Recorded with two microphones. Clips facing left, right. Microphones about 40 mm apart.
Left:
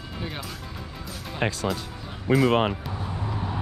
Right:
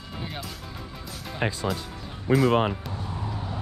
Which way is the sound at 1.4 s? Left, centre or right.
Left.